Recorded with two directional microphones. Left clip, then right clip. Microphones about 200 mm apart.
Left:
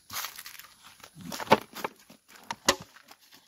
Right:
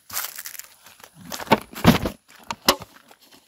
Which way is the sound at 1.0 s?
35° right (ahead or behind).